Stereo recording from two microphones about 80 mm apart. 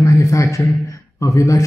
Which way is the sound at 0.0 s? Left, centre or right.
Left.